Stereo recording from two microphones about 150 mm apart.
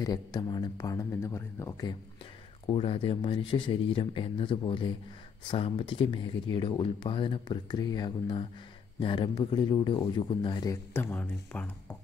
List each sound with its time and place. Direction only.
0.0 s speech: 25° left (ahead or behind)
2.6 s speech: 40° left (ahead or behind)
10.9 s speech: 10° left (ahead or behind)